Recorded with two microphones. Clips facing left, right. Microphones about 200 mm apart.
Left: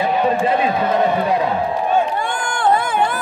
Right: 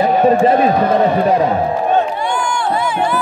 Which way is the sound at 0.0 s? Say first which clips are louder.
Right 6 dB; 45° right (ahead or behind).